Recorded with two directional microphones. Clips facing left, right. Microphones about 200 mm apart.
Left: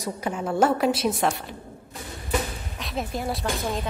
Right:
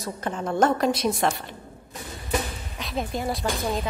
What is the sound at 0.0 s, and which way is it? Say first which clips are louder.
A woman's voice: left 1 dB; 10° left (ahead or behind).